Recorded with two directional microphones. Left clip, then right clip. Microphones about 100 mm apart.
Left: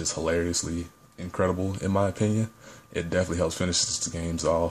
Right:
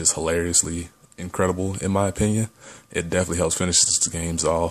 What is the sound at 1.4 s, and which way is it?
Speech, 40° right (ahead or behind).